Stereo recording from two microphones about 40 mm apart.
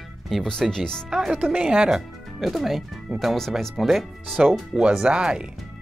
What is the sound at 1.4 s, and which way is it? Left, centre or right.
Speech, right.